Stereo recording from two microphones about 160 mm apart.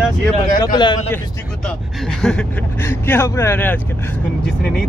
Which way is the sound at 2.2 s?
5° left (ahead or behind).